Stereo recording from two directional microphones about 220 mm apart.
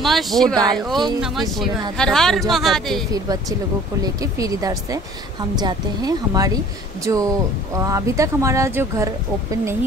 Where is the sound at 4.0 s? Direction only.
15° right (ahead or behind).